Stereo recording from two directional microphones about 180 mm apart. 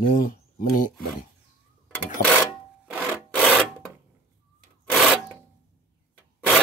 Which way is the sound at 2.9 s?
10° right (ahead or behind).